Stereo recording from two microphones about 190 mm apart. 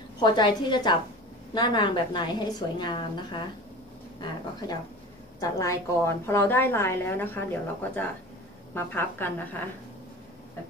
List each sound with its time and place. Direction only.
0.2 s a woman's voice: 20° left (ahead or behind)
8.7 s a woman's voice: 10° left (ahead or behind)